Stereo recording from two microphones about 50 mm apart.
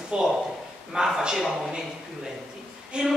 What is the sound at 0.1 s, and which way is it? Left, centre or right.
Speech, centre.